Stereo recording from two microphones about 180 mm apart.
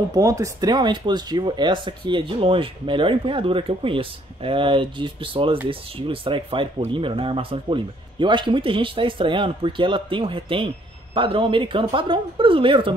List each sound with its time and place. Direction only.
0.1 s speech: 20° right (ahead or behind)